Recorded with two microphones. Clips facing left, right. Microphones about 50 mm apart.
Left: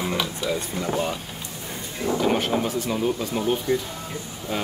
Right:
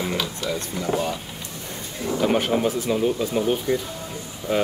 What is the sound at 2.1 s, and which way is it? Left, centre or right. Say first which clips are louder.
Speech: right 2 dB; centre.